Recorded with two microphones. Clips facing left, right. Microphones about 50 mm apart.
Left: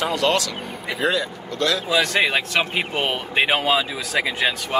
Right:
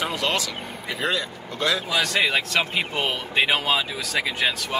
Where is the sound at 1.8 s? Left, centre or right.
Left.